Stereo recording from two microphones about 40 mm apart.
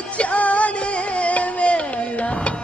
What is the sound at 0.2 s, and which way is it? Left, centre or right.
Music, left.